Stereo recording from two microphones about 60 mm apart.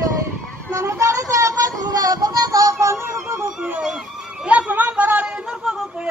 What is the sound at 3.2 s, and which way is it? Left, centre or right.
Speech, right.